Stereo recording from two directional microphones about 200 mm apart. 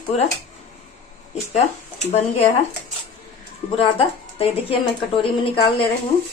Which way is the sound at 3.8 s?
30° left (ahead or behind).